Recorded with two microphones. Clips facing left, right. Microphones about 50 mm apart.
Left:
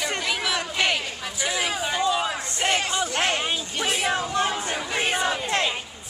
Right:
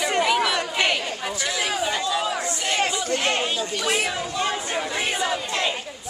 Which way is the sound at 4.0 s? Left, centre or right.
Left.